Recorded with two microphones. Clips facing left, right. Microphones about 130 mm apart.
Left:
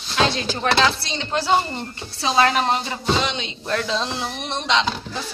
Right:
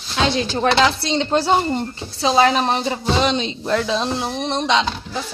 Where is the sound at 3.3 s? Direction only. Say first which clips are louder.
Right 8 dB; 35° right (ahead or behind).